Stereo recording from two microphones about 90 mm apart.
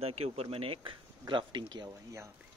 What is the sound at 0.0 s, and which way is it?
Speech, 90° right.